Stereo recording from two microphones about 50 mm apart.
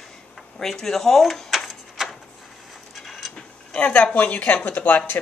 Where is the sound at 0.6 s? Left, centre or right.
Centre.